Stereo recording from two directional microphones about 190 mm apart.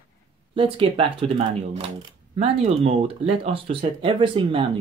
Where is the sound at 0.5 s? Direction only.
30° right (ahead or behind).